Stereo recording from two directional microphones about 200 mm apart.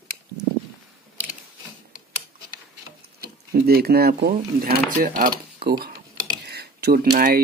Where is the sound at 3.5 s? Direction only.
50° right (ahead or behind).